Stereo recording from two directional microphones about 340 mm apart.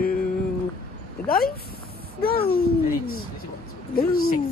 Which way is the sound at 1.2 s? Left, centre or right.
Left.